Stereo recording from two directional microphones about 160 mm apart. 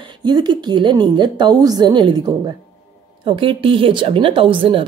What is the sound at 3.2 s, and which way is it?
A woman's voice, 30° right (ahead or behind).